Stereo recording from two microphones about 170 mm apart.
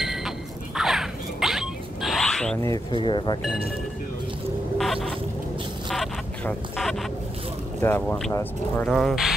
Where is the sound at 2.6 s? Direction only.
20° left (ahead or behind).